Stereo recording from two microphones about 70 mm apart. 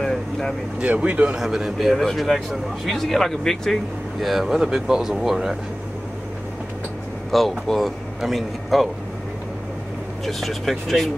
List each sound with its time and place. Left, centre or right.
0.0 s vehicle: centre
0.7 s speech: centre
1.3 s speech: centre
7.2 s speech: centre
10.2 s speech: centre